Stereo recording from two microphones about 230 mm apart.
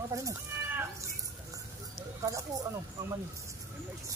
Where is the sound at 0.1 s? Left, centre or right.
Centre.